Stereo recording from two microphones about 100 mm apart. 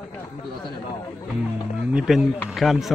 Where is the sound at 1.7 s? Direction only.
10° right (ahead or behind).